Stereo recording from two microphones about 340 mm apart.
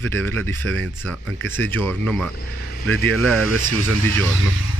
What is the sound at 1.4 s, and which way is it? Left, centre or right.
Speech, centre.